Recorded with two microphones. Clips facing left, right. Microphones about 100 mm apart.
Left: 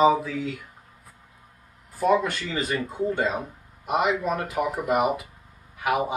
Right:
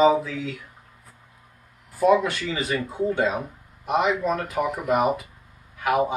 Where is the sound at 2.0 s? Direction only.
Centre (ahead or behind).